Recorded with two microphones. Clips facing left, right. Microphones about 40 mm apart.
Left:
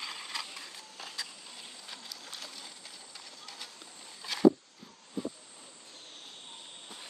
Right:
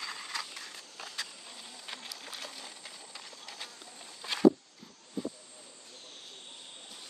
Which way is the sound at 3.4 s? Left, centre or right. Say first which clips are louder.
Right 1 dB; centre.